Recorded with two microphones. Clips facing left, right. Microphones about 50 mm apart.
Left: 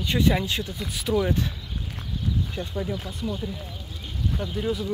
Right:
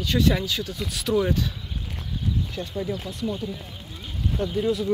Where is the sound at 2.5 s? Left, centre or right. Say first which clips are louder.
Even; left.